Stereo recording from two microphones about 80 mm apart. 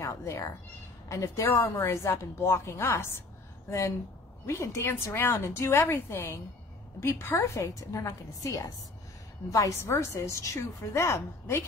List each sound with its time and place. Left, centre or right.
0.0 s a woman's voice: left
4.5 s a woman's voice: left